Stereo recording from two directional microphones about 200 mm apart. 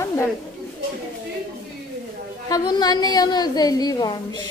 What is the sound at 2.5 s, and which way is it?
A woman's voice, 20° left (ahead or behind).